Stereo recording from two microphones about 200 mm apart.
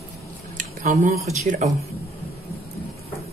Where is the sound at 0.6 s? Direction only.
40° right (ahead or behind).